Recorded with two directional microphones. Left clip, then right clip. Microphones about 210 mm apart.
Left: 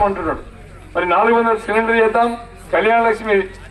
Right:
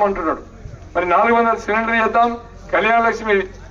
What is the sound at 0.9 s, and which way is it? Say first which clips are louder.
A man's voice: even; 45° left (ahead or behind).